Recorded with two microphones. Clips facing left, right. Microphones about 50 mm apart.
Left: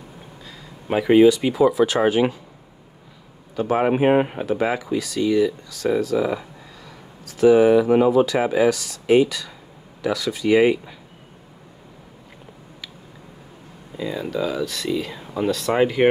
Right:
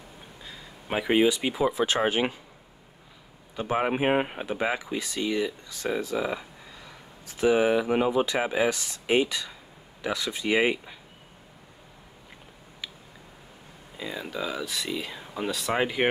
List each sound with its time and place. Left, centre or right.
0.8 s speech: centre
1.7 s speech: right
3.5 s speech: centre
3.8 s speech: centre
4.5 s speech: centre
4.9 s speech: right
6.1 s speech: centre
7.2 s speech: centre
8.6 s speech: right
13.9 s speech: centre